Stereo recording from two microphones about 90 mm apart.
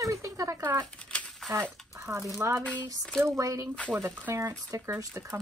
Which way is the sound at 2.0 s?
30° right (ahead or behind).